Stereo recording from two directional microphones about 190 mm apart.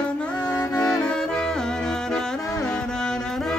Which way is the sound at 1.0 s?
5° left (ahead or behind).